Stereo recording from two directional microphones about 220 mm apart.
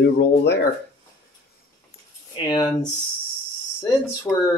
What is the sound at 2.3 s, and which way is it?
Speech, 25° left (ahead or behind).